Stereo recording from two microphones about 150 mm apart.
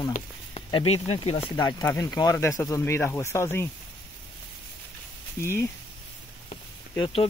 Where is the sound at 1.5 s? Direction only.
25° left (ahead or behind).